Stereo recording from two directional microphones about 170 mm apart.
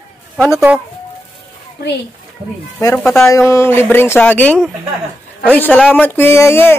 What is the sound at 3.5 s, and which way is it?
Speech, 15° left (ahead or behind).